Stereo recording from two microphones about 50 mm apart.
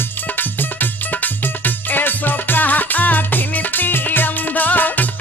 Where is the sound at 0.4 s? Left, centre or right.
Left.